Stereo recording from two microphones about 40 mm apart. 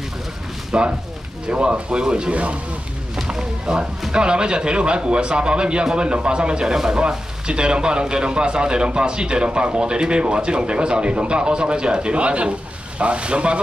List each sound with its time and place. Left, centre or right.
0.7 s speech: right
3.3 s speech: centre